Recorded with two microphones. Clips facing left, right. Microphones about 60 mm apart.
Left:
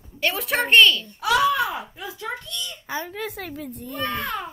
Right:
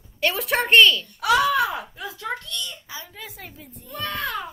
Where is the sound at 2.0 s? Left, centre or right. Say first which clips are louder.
Even; left.